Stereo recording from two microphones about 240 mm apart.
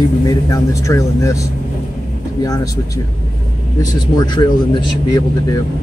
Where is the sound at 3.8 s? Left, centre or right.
Centre.